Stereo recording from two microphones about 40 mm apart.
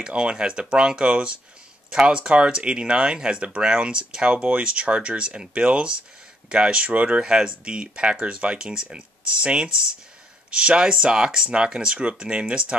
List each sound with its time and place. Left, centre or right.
0.0 s speech: right